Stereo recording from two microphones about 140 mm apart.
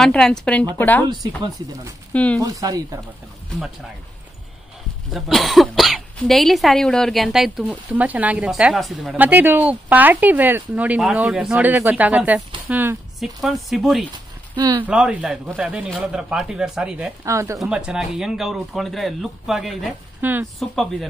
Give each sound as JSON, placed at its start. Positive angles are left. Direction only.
{"t": 0.0, "sound": "speech", "side_deg": 5}
{"t": 2.1, "sound": "speech", "side_deg": 10}
{"t": 2.4, "sound": "speech", "side_deg": -25}
{"t": 5.1, "sound": "speech", "side_deg": 0}
{"t": 9.1, "sound": "speech", "side_deg": -10}
{"t": 13.2, "sound": "speech", "side_deg": 0}
{"t": 14.5, "sound": "speech", "side_deg": -30}
{"t": 14.9, "sound": "speech", "side_deg": -5}
{"t": 17.2, "sound": "speech", "side_deg": -20}
{"t": 17.6, "sound": "speech", "side_deg": -5}
{"t": 20.2, "sound": "speech", "side_deg": -15}
{"t": 20.5, "sound": "speech", "side_deg": 0}